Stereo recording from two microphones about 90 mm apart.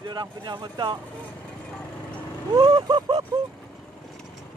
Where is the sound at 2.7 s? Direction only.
60° right (ahead or behind).